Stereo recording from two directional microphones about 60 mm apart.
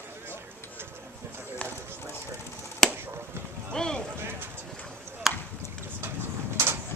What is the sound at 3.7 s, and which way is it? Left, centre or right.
Run, centre.